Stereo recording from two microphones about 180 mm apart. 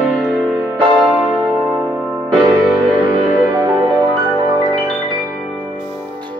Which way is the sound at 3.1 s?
25° right (ahead or behind).